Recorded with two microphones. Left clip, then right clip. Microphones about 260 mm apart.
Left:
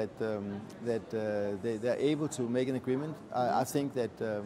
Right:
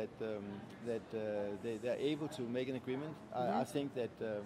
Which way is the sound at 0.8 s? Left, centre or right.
Left.